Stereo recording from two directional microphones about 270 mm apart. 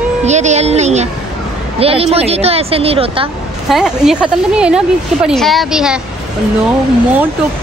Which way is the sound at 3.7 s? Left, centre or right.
Centre.